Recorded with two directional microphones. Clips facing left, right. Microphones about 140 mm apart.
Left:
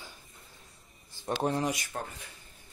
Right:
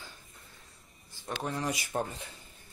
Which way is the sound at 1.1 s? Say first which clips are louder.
Left 6 dB; 30° left (ahead or behind).